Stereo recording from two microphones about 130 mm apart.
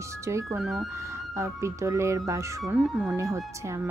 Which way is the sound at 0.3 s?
20° right (ahead or behind).